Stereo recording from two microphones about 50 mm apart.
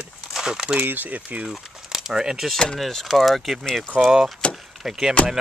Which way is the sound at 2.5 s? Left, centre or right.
Centre.